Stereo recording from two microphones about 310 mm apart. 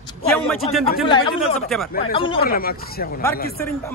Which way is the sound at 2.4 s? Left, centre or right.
Left.